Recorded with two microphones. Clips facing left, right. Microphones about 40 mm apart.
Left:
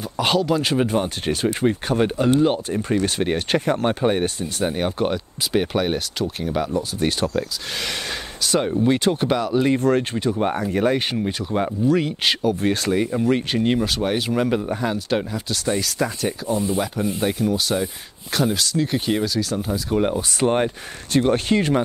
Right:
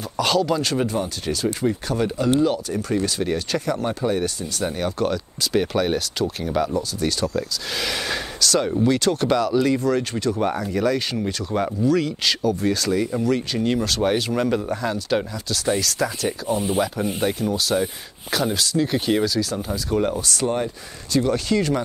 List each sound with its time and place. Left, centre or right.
0.2 s speech: centre
0.8 s speech: left; by 6.6 s centre
7.0 s speech: left
9.1 s speech: centre
9.8 s speech: left
13.7 s speech: centre
20.1 s speech: left
20.4 s speech: left